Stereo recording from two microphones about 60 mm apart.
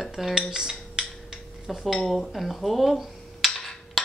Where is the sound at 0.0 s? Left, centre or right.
Centre.